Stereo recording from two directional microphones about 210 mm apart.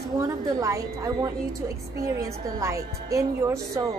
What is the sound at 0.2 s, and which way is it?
A woman's voice, 15° right (ahead or behind).